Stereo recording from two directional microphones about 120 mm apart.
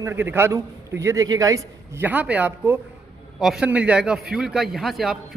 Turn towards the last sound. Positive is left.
turn(degrees=0)  # may be behind; listen again after turning